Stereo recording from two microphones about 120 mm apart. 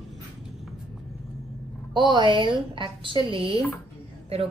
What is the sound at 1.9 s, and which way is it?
A woman's voice, 40° right (ahead or behind).